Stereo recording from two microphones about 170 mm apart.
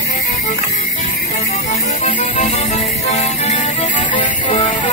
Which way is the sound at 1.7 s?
45° left (ahead or behind).